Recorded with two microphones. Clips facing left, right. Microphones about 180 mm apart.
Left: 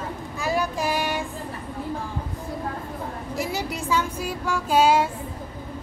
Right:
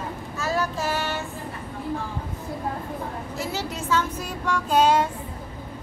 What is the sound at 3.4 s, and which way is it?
Child singing, 15° left (ahead or behind).